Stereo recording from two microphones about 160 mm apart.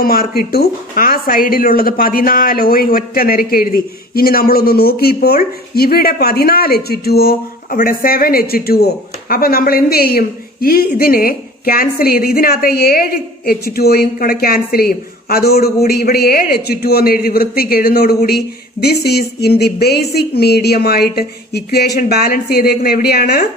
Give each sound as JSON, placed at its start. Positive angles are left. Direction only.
{"t": 0.0, "sound": "speech", "side_deg": 65}
{"t": 19.0, "sound": "speech", "side_deg": 90}